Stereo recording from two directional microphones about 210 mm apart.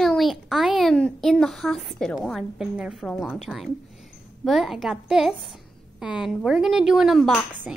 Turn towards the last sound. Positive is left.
turn(degrees=0)  # may be behind; listen again after turning